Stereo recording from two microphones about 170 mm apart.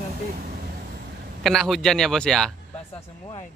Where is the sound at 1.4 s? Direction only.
Centre (ahead or behind).